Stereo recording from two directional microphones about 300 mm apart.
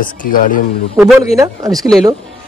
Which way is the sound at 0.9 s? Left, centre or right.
Centre.